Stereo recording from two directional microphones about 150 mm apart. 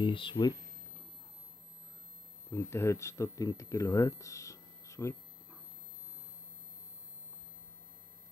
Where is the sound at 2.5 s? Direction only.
15° left (ahead or behind).